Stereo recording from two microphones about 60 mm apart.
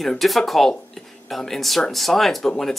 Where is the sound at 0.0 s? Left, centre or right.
Centre.